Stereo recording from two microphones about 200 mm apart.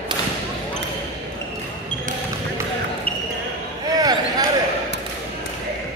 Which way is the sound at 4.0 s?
20° right (ahead or behind).